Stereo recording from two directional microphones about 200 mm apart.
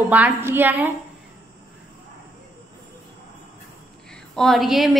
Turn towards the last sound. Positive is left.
turn(degrees=0)  # may be behind; listen again after turning